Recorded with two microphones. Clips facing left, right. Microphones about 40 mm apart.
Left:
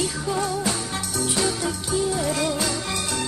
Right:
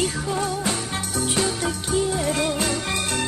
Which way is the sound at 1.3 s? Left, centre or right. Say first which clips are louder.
Right 1 dB; right.